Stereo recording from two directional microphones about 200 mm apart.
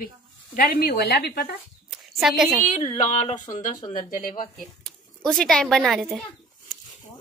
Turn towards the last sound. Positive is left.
turn(degrees=0)  # may be behind; listen again after turning